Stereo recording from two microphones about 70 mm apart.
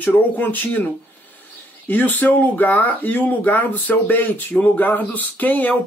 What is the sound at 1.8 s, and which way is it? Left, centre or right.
Speech, left.